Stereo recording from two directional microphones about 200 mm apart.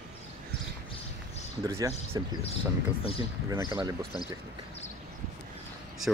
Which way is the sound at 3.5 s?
15° right (ahead or behind).